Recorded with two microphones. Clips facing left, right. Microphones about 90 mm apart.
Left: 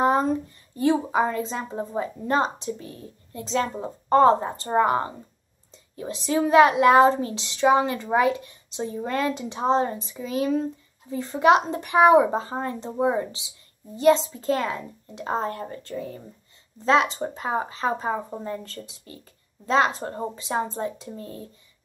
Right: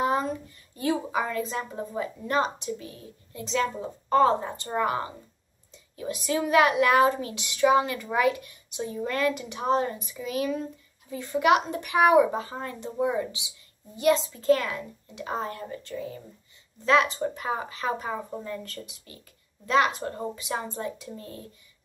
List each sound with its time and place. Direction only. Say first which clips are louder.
0.0 s a child's voice: left 5 dB; 35° left (ahead or behind)
16.8 s a woman's voice: left 2 dB; 25° left (ahead or behind)